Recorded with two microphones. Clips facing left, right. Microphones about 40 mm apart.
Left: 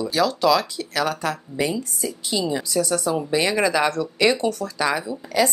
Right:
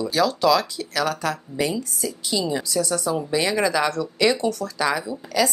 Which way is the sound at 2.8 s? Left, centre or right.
Left.